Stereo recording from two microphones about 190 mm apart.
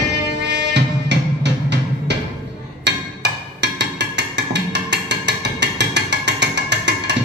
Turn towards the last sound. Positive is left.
turn(degrees=-65)  # may be behind; listen again after turning